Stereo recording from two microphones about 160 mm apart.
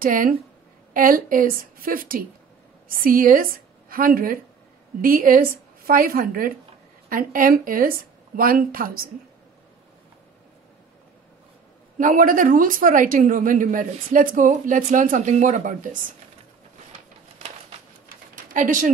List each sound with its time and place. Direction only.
0.0 s a woman's voice: 60° right (ahead or behind)
12.0 s a woman's voice: 55° right (ahead or behind)
18.0 s a sound: 55° right (ahead or behind)